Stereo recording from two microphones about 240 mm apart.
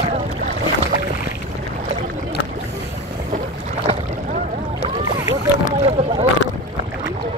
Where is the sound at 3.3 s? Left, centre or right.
Right.